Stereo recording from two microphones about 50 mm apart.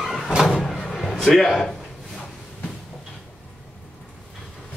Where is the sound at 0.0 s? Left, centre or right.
Centre.